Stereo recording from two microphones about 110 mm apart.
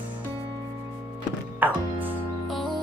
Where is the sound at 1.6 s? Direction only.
15° right (ahead or behind).